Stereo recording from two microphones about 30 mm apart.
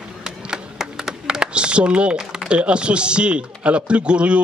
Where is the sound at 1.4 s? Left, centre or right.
Right.